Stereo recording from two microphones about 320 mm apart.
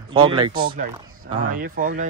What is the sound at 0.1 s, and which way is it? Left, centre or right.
A man's voice, centre.